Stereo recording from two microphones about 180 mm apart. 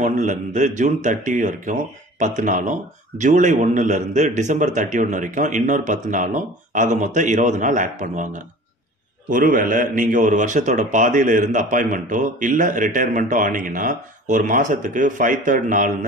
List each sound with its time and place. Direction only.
0.0 s speech: 45° right (ahead or behind)